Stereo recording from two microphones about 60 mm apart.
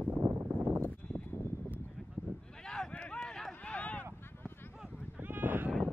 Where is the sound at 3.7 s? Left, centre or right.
Left.